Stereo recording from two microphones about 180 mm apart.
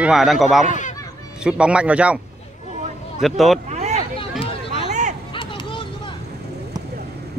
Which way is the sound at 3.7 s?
40° right (ahead or behind).